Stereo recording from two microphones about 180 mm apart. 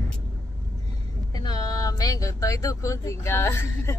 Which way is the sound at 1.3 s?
20° left (ahead or behind).